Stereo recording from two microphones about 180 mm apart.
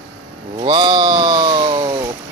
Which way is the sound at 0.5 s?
25° right (ahead or behind).